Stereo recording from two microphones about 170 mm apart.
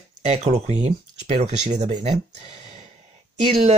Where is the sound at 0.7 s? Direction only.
40° right (ahead or behind).